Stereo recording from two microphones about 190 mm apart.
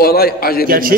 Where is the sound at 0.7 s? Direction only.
50° right (ahead or behind).